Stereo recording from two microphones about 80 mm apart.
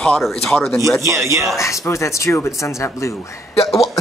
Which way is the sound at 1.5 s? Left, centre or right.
Left.